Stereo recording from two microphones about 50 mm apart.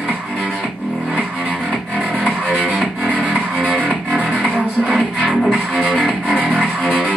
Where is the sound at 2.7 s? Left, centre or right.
Centre.